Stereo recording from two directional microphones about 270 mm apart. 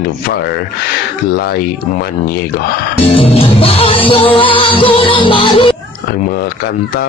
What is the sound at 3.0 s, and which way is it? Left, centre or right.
Music, left.